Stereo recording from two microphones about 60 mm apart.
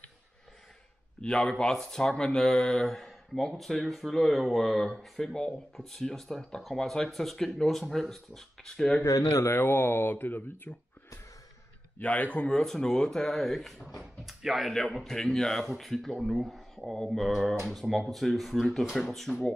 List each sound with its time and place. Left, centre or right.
1.2 s speech: centre
9.4 s speech: left
12.0 s speech: left
12.4 s speech: centre